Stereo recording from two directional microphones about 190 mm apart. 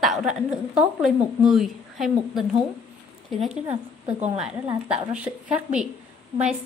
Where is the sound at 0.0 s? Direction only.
Centre (ahead or behind).